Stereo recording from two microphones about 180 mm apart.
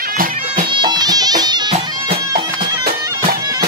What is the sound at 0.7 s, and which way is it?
Music, 25° right (ahead or behind).